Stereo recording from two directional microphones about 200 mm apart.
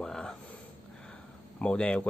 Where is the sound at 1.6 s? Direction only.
5° left (ahead or behind).